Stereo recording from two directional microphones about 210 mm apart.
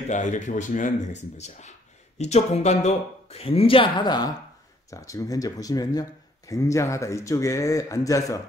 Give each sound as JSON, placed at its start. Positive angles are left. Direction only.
{"t": 0.1, "sound": "speech", "side_deg": 35}